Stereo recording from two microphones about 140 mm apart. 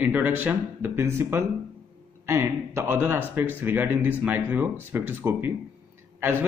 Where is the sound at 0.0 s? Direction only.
15° right (ahead or behind).